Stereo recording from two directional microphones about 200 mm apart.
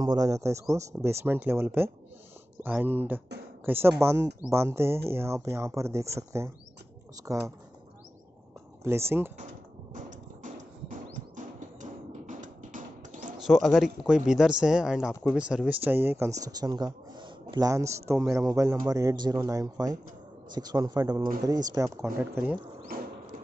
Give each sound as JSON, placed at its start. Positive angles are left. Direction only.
{"t": 0.0, "sound": "speech", "side_deg": -20}
{"t": 8.8, "sound": "speech", "side_deg": -10}
{"t": 9.9, "sound": "a sound", "side_deg": -40}
{"t": 11.3, "sound": "music", "side_deg": -40}
{"t": 13.4, "sound": "a man's voice", "side_deg": 0}
{"t": 22.9, "sound": "a sound", "side_deg": -45}